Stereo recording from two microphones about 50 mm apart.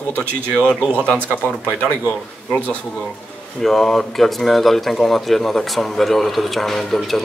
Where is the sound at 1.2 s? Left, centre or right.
Left.